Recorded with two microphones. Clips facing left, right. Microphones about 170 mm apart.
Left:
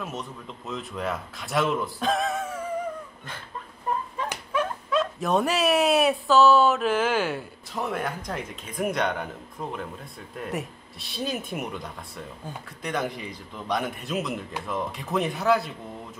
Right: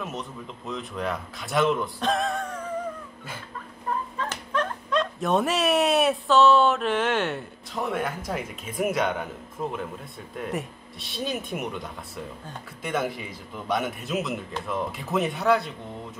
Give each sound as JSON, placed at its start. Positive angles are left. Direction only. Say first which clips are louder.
{"t": 0.0, "sound": "a man's voice", "louder": "right 1 dB", "side_deg": 0}
{"t": 3.9, "sound": "fowl", "louder": "left 1 dB", "side_deg": 15}
{"t": 4.2, "sound": "a man's voice", "louder": "even", "side_deg": 10}